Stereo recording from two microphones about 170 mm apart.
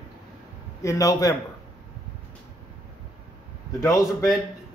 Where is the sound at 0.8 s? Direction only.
20° left (ahead or behind).